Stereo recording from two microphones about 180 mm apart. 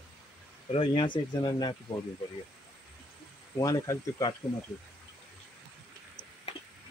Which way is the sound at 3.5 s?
20° left (ahead or behind).